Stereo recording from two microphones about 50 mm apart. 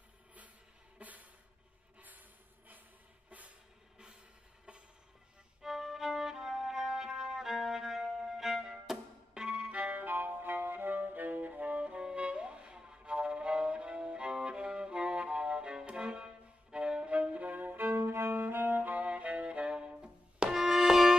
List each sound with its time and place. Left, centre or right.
0.9 s a sound: right
2.0 s snort: right
3.3 s music: right
5.6 s violin: centre
8.2 s music: centre
9.9 s music: right; by 16.3 s centre
16.7 s violin: centre